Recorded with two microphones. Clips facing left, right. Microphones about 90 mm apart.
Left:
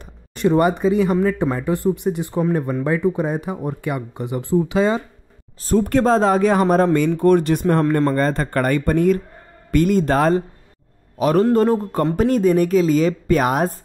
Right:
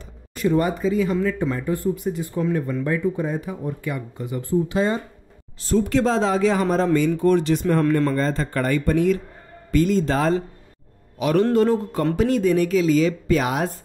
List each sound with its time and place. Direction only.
0.4 s speech: 60° left (ahead or behind); by 5.0 s 90° left
5.8 s speech: 45° left (ahead or behind)
11.1 s a man's voice: 40° left (ahead or behind)